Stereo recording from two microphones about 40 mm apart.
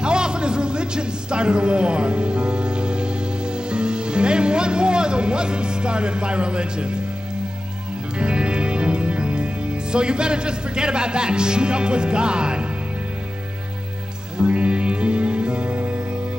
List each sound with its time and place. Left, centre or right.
0.0 s a man's voice: right
8.2 s music: right
14.4 s music: right